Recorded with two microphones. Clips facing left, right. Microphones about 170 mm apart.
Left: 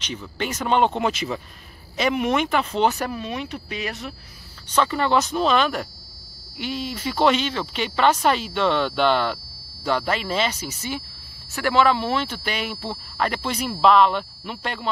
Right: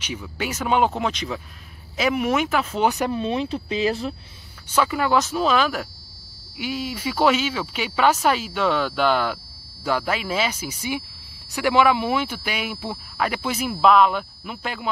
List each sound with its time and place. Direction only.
0.0 s speech: 10° right (ahead or behind)
3.1 s speech: 30° right (ahead or behind)
4.6 s speech: 5° right (ahead or behind)